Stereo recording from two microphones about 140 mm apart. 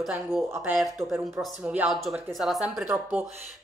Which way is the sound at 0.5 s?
15° right (ahead or behind).